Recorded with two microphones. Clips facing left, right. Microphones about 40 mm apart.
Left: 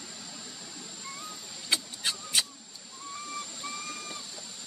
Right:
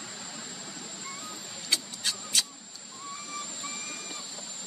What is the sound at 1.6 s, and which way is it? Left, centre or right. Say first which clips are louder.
Vehicle: left 1 dB; centre.